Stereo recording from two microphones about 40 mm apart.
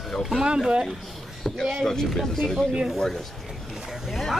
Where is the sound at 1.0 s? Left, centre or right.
Centre.